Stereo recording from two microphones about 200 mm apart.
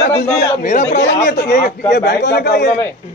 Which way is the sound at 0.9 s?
50° left (ahead or behind).